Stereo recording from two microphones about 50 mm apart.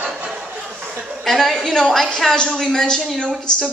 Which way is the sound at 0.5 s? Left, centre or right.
Right.